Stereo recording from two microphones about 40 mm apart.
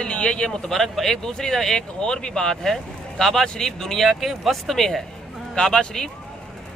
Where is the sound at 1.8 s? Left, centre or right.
Left.